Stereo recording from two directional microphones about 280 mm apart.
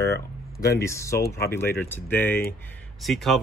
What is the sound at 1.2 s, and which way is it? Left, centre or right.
Speech, left.